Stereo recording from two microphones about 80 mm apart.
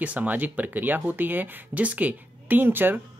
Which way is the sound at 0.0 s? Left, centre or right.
Centre.